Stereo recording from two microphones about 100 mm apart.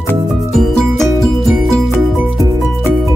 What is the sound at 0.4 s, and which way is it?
Music, centre (ahead or behind).